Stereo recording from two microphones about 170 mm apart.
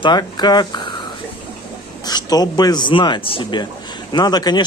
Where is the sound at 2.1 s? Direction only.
25° left (ahead or behind).